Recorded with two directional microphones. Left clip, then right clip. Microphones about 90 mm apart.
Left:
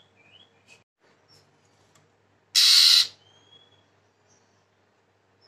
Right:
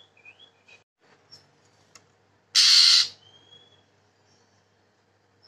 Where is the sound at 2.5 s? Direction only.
30° left (ahead or behind).